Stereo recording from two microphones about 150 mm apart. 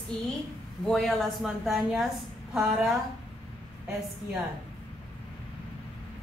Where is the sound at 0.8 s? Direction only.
Centre (ahead or behind).